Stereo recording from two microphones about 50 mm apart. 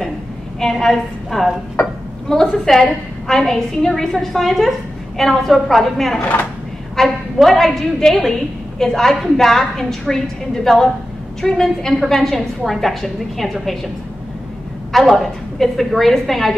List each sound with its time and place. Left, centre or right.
0.6 s a woman's voice: centre
1.8 s a sound: left
2.2 s a woman's voice: centre
14.9 s a woman's voice: centre